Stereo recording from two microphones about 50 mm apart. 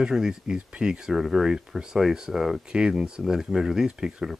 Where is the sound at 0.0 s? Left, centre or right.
Centre.